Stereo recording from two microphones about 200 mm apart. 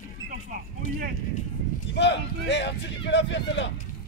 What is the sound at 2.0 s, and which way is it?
Speech, 60° left (ahead or behind).